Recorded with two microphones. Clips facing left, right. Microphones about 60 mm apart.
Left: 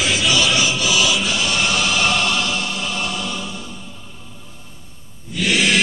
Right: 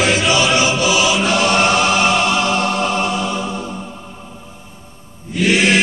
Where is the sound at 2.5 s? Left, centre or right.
Right.